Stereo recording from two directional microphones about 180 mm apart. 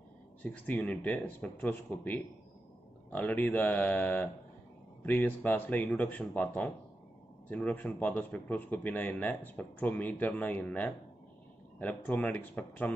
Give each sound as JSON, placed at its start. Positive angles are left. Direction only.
{"t": 0.4, "sound": "speech", "side_deg": 10}